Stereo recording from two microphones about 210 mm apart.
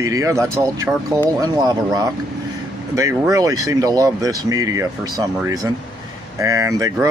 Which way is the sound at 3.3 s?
15° right (ahead or behind).